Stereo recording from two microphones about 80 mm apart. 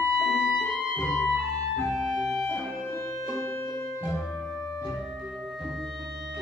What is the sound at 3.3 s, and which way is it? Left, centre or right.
Music, left.